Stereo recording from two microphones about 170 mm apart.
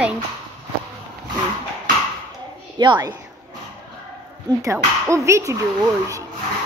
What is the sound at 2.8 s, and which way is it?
Speech, 25° right (ahead or behind).